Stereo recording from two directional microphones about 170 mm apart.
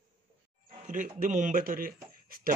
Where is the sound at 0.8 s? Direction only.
50° right (ahead or behind).